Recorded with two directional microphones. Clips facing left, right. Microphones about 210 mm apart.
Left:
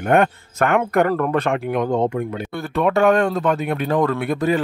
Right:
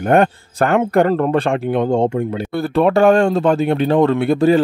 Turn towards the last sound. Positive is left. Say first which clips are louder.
# right 6 dB
turn(degrees=-30)  # may be behind; listen again after turning